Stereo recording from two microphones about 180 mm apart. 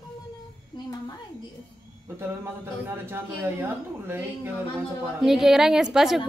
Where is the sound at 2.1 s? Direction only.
15° right (ahead or behind).